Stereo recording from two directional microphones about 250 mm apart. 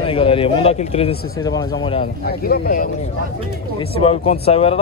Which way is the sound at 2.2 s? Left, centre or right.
Left.